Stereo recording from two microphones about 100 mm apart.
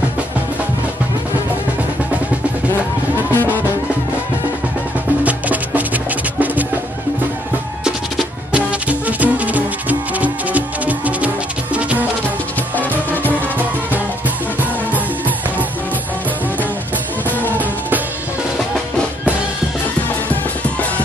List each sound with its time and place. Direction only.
3.3 s music: 20° left (ahead or behind)
5.2 s music: 15° right (ahead or behind)
8.5 s music: 15° right (ahead or behind)
12.7 s music: 20° left (ahead or behind)
17.6 s music: 15° right (ahead or behind)